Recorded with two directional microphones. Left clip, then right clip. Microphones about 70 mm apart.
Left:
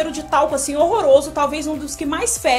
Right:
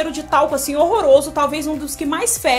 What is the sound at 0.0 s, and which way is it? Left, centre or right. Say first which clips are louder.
Speech: right 1 dB; right.